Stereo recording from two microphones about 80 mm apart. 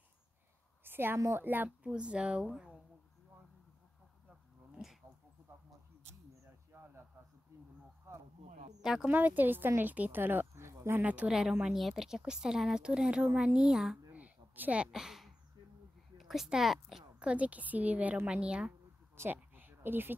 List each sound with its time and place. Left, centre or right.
0.8 s speech: right
1.8 s a woman's voice: centre
4.8 s a sound: centre
6.7 s a sound: right
8.1 s speech: right
8.8 s a woman's voice: centre
9.1 s speech: right
11.0 s speech: centre
11.2 s a woman's voice: centre
14.1 s a sound: right
14.9 s a woman's voice: centre
17.2 s a woman's voice: centre
19.1 s a sound: right